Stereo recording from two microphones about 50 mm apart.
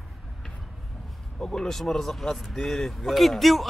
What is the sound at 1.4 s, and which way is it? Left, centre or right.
Speech, centre.